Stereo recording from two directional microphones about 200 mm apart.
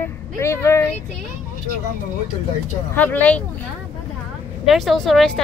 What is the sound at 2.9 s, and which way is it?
Speech, 10° left (ahead or behind).